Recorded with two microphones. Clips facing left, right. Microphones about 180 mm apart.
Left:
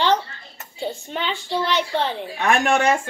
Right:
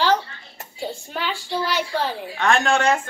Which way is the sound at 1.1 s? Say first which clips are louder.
Left 1 dB; 5° right (ahead or behind).